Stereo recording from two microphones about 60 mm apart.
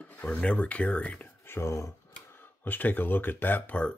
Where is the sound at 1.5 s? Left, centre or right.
Left.